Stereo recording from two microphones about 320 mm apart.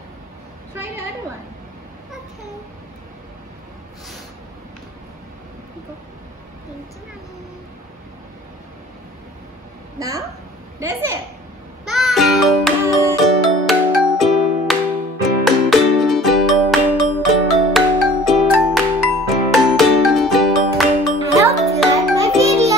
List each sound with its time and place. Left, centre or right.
9.9 s a woman's voice: centre
11.8 s music: centre